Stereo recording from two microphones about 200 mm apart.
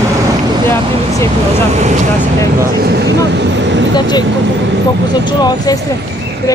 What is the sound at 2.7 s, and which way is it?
Speech, 55° right (ahead or behind).